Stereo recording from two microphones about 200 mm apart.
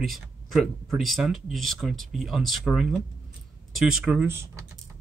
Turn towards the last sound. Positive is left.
turn(degrees=-15)  # may be behind; listen again after turning